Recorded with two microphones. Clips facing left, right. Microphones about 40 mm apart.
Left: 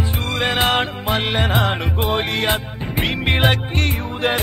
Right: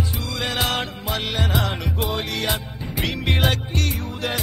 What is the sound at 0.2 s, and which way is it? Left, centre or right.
Music, left.